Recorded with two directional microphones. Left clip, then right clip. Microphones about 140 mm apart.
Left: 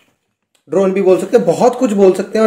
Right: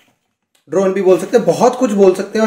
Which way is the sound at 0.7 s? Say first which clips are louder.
Left 1 dB; 25° left (ahead or behind).